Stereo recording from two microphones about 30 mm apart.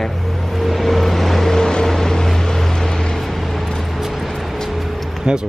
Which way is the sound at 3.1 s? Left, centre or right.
Centre.